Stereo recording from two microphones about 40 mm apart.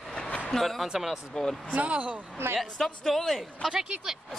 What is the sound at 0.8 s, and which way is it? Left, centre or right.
Speech, centre.